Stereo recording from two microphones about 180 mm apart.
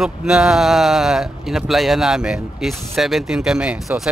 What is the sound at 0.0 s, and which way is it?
Speech, 5° right (ahead or behind).